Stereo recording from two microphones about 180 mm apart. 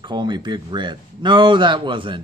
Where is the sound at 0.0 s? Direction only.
25° right (ahead or behind).